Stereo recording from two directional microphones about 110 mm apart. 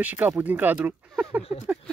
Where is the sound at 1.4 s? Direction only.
65° left (ahead or behind).